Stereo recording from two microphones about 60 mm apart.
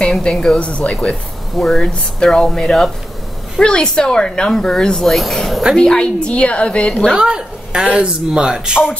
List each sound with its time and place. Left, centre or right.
0.1 s a woman's voice: centre
0.6 s speech: left
1.6 s speech: centre
5.8 s speech: centre
7.1 s a woman's voice: centre